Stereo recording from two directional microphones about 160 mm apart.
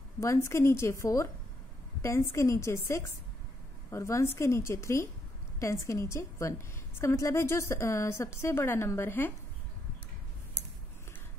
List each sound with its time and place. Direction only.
0.2 s a woman's voice: 15° left (ahead or behind)